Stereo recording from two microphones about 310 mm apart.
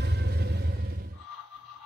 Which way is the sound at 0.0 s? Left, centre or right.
Right.